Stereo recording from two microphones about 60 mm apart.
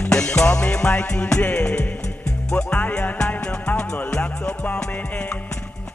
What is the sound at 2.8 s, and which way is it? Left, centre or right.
Music, left.